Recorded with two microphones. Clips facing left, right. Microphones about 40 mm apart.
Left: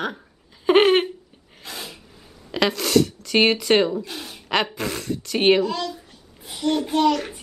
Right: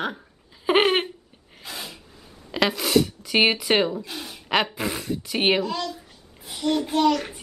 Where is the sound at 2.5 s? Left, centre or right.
Centre.